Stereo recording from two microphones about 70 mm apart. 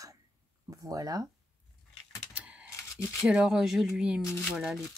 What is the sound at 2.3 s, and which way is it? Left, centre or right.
Computer keyboard, centre.